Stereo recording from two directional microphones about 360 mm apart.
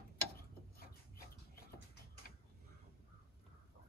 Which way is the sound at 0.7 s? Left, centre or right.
Left.